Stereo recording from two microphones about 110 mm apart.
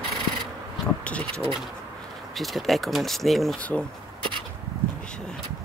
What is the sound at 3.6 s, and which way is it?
Speech, 10° left (ahead or behind).